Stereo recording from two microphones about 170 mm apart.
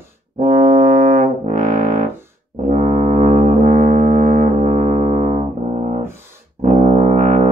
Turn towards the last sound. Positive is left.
turn(degrees=-50)  # may be behind; listen again after turning